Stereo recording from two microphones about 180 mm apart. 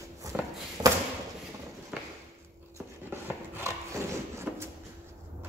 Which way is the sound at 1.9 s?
5° right (ahead or behind).